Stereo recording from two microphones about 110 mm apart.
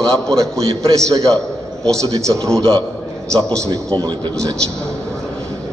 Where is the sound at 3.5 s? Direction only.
30° right (ahead or behind).